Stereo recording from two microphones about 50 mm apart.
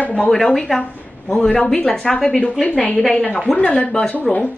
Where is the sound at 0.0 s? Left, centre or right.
Left.